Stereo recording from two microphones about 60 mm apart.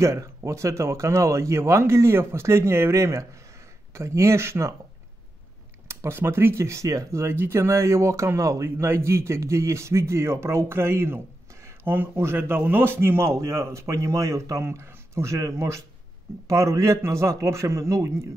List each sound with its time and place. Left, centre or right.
0.0 s speech: right
5.9 s speech: right
11.8 s a man's voice: right